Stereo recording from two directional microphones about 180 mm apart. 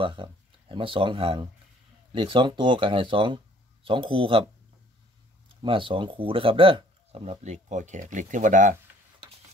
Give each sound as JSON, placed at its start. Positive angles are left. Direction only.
{"t": 0.0, "sound": "speech", "side_deg": -25}
{"t": 5.6, "sound": "speech", "side_deg": -30}